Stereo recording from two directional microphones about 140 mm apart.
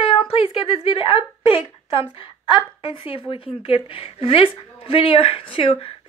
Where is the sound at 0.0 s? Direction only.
40° left (ahead or behind).